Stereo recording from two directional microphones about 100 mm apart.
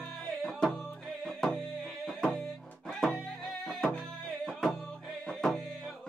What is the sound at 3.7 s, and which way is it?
Music, 5° left (ahead or behind).